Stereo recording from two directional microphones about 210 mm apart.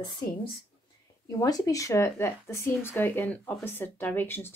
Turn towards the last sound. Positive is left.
turn(degrees=10)  # may be behind; listen again after turning